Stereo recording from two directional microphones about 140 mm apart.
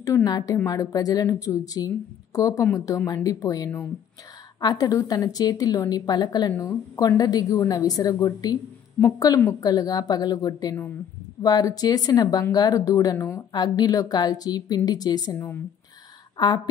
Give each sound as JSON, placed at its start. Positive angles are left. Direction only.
{"t": 0.0, "sound": "speech", "side_deg": 25}
{"t": 16.3, "sound": "speech", "side_deg": 30}